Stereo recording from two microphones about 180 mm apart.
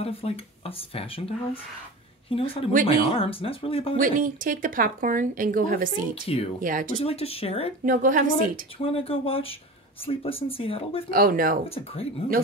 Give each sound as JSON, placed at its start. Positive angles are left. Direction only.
{"t": 0.0, "sound": "speech", "side_deg": 35}
{"t": 4.0, "sound": "speech", "side_deg": -50}
{"t": 6.2, "sound": "speech", "side_deg": 35}
{"t": 6.6, "sound": "speech", "side_deg": -50}
{"t": 7.0, "sound": "speech", "side_deg": 35}
{"t": 7.8, "sound": "speech", "side_deg": -50}
{"t": 8.8, "sound": "speech", "side_deg": 30}
{"t": 11.1, "sound": "speech", "side_deg": -55}
{"t": 11.7, "sound": "speech", "side_deg": 35}